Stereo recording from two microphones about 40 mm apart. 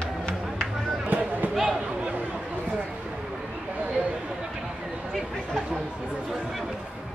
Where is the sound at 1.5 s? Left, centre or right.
Centre.